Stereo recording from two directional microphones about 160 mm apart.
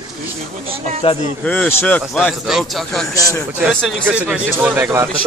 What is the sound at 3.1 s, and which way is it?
Speech, 20° left (ahead or behind).